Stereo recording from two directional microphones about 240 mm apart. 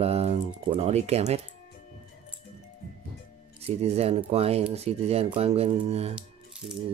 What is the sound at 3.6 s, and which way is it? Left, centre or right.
Speech, right.